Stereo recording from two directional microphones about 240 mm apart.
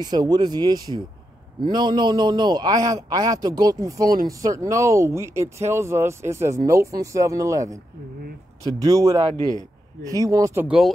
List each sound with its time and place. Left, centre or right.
0.0 s speech: centre